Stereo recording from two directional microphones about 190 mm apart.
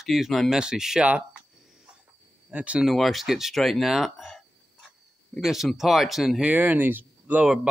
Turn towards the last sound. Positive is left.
turn(degrees=-5)  # may be behind; listen again after turning